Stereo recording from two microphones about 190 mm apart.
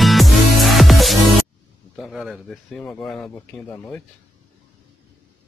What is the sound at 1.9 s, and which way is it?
Speech, centre (ahead or behind).